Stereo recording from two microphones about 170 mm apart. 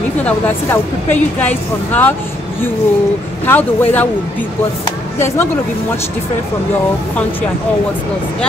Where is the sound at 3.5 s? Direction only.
10° left (ahead or behind).